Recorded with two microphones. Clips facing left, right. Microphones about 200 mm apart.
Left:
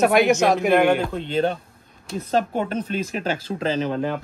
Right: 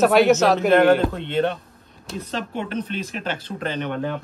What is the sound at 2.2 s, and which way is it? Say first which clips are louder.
Speech: left 7 dB; 45° left (ahead or behind).